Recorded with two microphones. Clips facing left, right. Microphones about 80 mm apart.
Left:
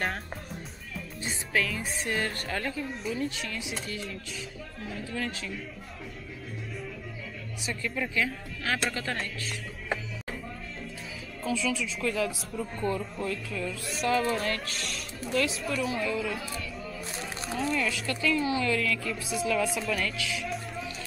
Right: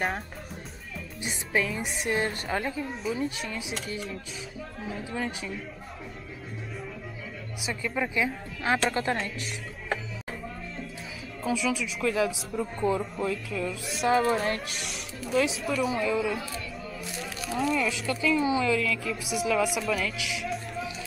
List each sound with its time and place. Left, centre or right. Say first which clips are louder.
1.2 s speech: right 1 dB; centre
2.9 s speech: right 2 dB; centre
3.8 s speech: right 2 dB; centre
7.6 s speech: right 3 dB; centre
11.4 s speech: right 2 dB; centre
14.0 s speech: right 3 dB; right
14.8 s speech: even; centre
17.0 s a sound: right 1 dB; left
17.7 s speech: right 2 dB; centre
19.2 s speech: right 2 dB; centre